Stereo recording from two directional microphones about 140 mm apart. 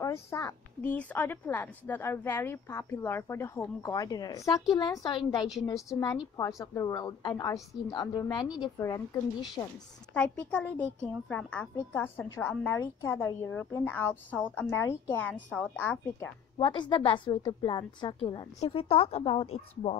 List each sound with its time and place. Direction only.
0.0 s a woman's voice: 20° left (ahead or behind)
10.1 s a woman's voice: 5° left (ahead or behind)
16.5 s a woman's voice: 35° left (ahead or behind)